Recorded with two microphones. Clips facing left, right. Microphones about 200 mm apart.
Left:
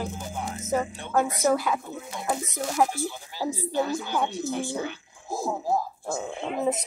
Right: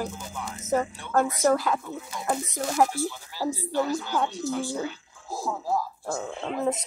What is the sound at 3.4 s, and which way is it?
A woman's voice, 20° left (ahead or behind).